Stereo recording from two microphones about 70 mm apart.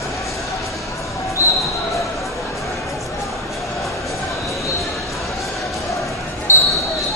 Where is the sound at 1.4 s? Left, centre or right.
Left.